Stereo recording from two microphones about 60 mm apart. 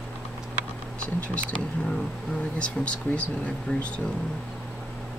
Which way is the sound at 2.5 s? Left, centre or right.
Centre.